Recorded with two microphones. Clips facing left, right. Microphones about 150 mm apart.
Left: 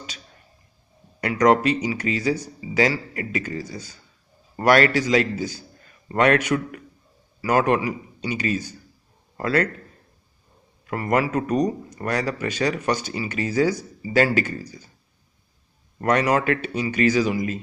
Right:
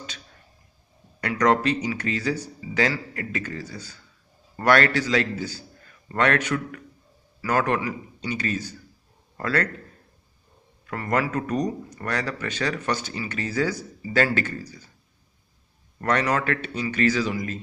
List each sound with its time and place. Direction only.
1.2 s a man's voice: 10° left (ahead or behind)
10.9 s a man's voice: 10° left (ahead or behind)
16.0 s a man's voice: 10° left (ahead or behind)